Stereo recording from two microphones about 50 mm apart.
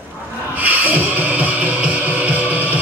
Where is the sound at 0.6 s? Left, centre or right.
Right.